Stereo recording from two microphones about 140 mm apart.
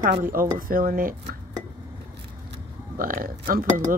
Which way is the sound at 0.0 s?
85° right.